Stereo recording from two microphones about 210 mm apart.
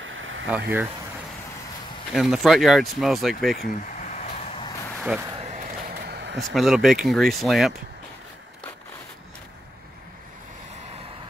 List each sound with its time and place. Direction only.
0.5 s speech: 10° right (ahead or behind)
2.1 s speech: centre (ahead or behind)
3.5 s a sound: 40° left (ahead or behind)
5.3 s a sound: 30° right (ahead or behind)
5.9 s vehicle: 50° right (ahead or behind)
6.5 s speech: centre (ahead or behind)